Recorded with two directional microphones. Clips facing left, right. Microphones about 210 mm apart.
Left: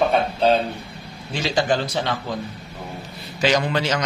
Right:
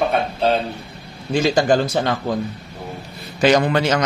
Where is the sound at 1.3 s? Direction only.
45° right (ahead or behind).